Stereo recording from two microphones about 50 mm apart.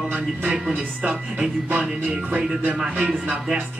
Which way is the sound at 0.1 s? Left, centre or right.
Right.